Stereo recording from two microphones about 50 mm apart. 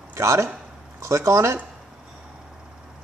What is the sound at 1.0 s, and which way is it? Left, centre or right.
Speech, right.